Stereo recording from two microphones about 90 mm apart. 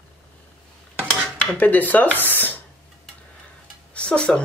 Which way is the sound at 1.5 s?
20° left (ahead or behind).